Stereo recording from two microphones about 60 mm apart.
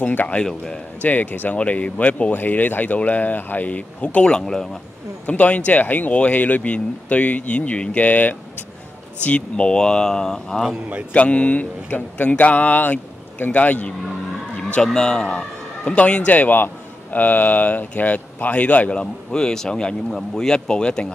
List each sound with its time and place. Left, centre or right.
0.0 s speech: left
0.4 s speech: centre
1.0 s speech: left; by 4.6 s centre
5.2 s speech: left; by 10.6 s centre
11.1 s speech: left
14.6 s a man's voice: centre
18.9 s speech: centre